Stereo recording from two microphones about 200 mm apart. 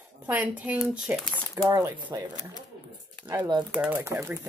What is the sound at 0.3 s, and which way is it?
Speech, 5° right (ahead or behind).